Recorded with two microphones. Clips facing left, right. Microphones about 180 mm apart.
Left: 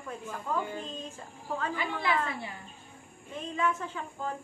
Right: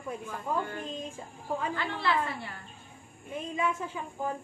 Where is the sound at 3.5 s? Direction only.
10° right (ahead or behind).